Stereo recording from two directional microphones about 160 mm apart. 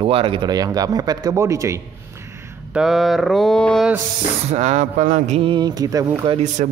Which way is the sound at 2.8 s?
Centre (ahead or behind).